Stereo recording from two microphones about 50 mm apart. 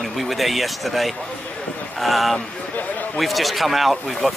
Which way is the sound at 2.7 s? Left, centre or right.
Left.